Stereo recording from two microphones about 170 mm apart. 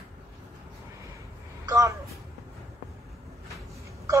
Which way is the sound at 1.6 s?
20° right (ahead or behind).